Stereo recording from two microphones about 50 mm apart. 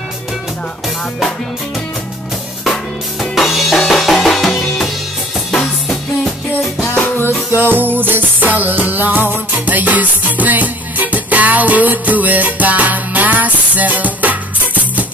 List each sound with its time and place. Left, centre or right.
2.6 s music: centre
7.5 s music: right